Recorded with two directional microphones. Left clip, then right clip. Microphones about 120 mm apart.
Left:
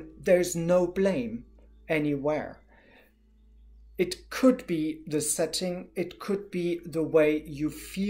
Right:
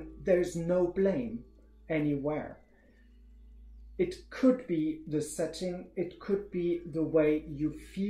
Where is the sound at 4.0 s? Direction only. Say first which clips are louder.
Left 4 dB; 15° left (ahead or behind).